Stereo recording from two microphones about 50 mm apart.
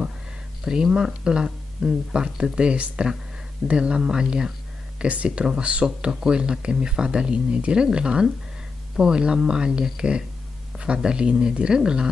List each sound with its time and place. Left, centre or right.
0.7 s speech: centre